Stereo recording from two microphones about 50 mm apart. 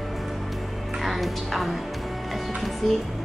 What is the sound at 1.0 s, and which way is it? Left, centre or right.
Speech, centre.